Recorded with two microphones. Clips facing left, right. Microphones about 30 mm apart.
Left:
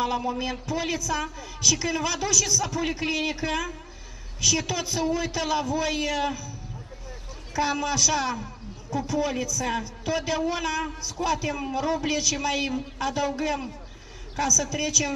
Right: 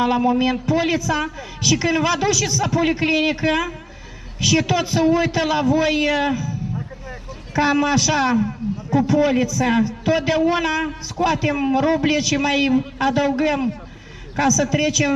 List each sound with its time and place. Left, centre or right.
0.0 s a man's voice: right
7.5 s a man's voice: right